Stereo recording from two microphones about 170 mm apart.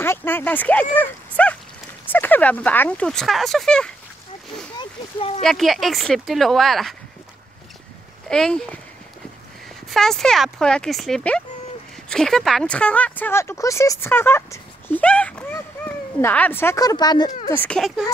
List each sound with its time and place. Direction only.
0.0 s speech: 15° left (ahead or behind)
0.9 s a sound: 10° left (ahead or behind)
2.0 s speech: 10° left (ahead or behind)
4.7 s speech: 35° left (ahead or behind)
5.4 s speech: centre (ahead or behind)
8.3 s speech: 5° left (ahead or behind)
9.8 s speech: centre (ahead or behind); by 17.3 s 25° left (ahead or behind)
17.5 s speech: 10° left (ahead or behind)